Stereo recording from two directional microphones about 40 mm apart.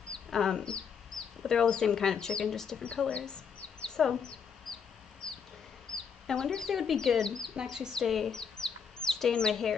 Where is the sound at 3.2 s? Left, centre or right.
Left.